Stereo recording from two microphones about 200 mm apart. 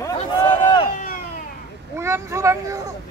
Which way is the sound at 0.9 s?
45° left (ahead or behind).